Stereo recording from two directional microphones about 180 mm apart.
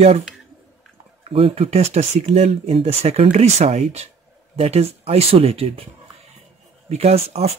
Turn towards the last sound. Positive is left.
turn(degrees=-35)  # may be behind; listen again after turning